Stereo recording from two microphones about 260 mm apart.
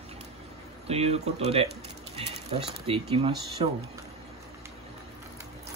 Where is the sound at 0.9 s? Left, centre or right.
Right.